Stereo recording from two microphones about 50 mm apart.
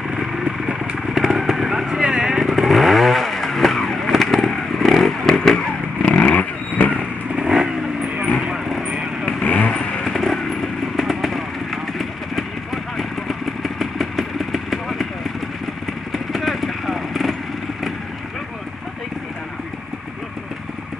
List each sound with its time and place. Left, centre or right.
0.1 s vehicle: centre
6.0 s vehicle: left
7.3 s vehicle: centre
9.4 s vehicle: left
9.7 s vehicle: centre
10.0 s vehicle: centre
16.1 s motorcycle: centre